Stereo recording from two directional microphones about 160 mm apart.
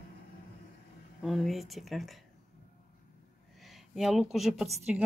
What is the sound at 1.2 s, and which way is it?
Speech, centre (ahead or behind).